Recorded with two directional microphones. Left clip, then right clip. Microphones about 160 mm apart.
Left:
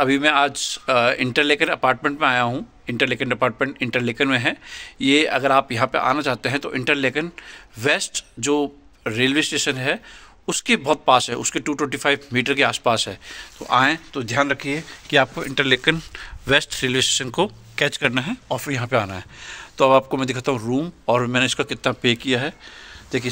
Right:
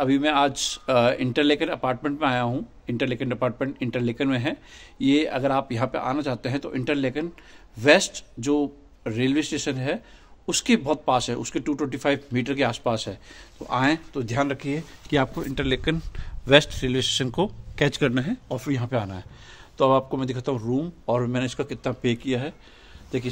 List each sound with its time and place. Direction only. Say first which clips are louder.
0.0 s a man's voice: left 4 dB; 5° left (ahead or behind)
18.5 s speech: left 7 dB; 5° left (ahead or behind)